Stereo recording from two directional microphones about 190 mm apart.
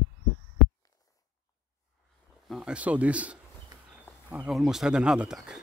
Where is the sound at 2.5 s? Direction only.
5° right (ahead or behind).